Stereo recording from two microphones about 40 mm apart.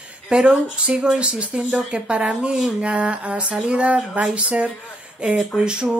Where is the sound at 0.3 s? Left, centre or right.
Right.